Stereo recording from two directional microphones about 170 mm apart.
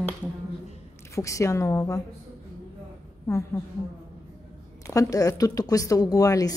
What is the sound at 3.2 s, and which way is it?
Speech, 15° left (ahead or behind).